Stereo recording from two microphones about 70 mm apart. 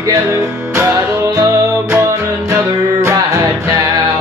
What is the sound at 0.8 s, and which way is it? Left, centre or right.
Music, right.